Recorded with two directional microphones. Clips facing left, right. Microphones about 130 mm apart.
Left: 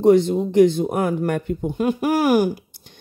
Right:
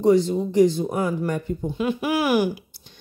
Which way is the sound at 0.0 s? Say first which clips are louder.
Left 3 dB; 60° left (ahead or behind).